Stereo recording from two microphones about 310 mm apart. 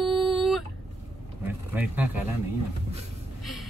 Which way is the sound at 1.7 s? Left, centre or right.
Centre.